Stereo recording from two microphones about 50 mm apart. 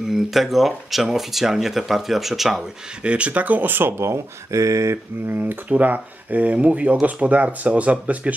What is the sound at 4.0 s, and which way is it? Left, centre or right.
Speech, right.